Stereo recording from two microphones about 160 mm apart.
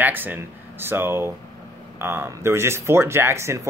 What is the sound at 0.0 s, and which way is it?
Speech, 10° right (ahead or behind).